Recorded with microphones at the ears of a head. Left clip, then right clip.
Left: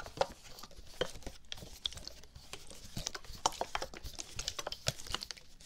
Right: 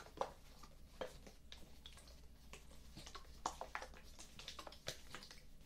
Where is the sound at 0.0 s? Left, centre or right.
Left.